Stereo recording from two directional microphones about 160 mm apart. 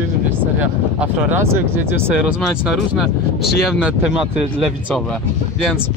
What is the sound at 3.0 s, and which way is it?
Speech, centre (ahead or behind).